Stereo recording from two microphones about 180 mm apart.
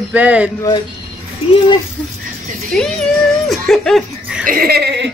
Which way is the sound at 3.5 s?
Centre (ahead or behind).